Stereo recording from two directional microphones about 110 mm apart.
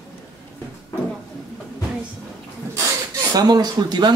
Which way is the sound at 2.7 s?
30° right (ahead or behind).